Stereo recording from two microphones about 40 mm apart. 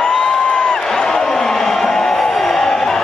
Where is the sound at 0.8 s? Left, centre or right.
Centre.